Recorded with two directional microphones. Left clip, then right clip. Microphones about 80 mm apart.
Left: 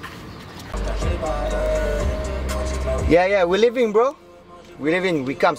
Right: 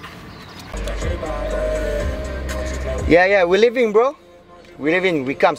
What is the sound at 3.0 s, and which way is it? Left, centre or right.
Speech, centre.